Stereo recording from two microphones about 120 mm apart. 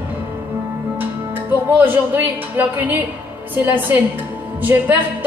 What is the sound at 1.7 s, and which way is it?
Speech, 15° right (ahead or behind).